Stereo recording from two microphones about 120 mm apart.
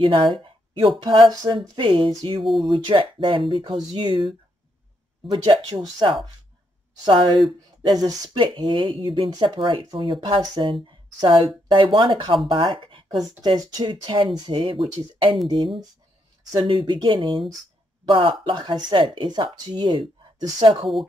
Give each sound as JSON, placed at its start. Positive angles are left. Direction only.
{"t": 0.0, "sound": "speech", "side_deg": -45}
{"t": 2.4, "sound": "speech", "side_deg": 0}
{"t": 2.7, "sound": "speech", "side_deg": -45}
{"t": 5.7, "sound": "speech", "side_deg": -35}
{"t": 10.4, "sound": "speech", "side_deg": -35}
{"t": 11.2, "sound": "speech", "side_deg": -45}
{"t": 13.4, "sound": "speech", "side_deg": -35}